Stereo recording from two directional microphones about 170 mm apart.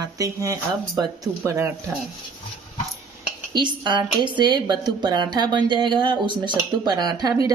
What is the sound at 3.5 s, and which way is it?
Speech, 25° right (ahead or behind).